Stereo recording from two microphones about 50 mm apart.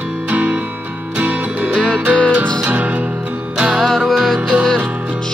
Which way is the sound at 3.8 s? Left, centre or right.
Centre.